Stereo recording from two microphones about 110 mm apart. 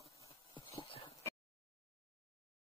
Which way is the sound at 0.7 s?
50° left (ahead or behind).